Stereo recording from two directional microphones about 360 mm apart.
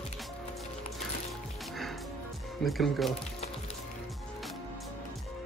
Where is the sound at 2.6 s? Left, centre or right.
Centre.